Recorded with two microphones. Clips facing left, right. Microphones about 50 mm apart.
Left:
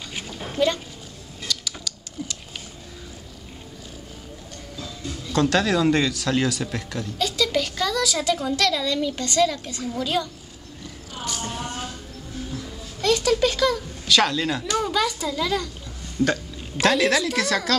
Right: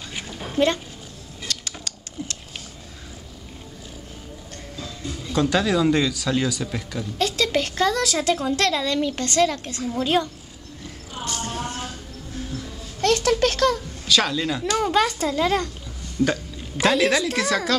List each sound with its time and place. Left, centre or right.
0.6 s a woman's voice: right
1.5 s a sound: right
1.9 s typing: right
5.0 s speech: centre
7.2 s a sound: right
8.5 s a child's voice: right
11.3 s a sound: centre
13.0 s a sound: right
13.4 s speech: right
14.0 s a woman's voice: centre
14.9 s a child's voice: right
16.2 s speech: centre